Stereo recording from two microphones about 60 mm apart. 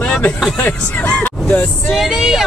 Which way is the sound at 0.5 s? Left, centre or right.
Left.